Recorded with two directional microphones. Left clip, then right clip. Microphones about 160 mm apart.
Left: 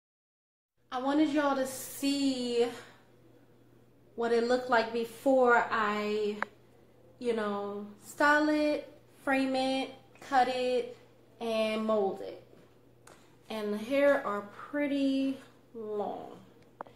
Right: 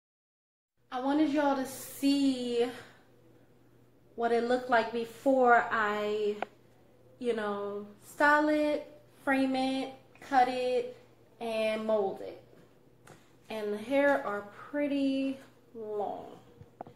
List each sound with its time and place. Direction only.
0.8 s a woman's voice: 10° left (ahead or behind)
4.2 s a woman's voice: 10° left (ahead or behind)
13.0 s a sound: 15° left (ahead or behind)
14.2 s a woman's voice: 15° left (ahead or behind)